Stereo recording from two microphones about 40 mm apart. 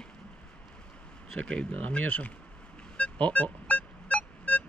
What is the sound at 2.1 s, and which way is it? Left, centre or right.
Speech, left.